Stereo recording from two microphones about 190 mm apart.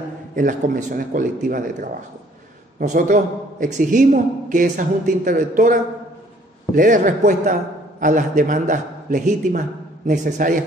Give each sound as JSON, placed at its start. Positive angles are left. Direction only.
{"t": 0.4, "sound": "a man's voice", "side_deg": -45}